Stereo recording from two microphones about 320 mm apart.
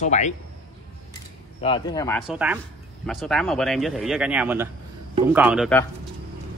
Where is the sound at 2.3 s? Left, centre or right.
Centre.